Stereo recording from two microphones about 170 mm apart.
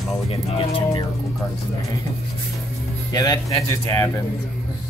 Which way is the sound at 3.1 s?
20° left (ahead or behind).